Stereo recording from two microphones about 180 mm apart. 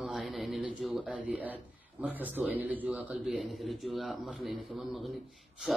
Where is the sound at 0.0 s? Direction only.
Centre (ahead or behind).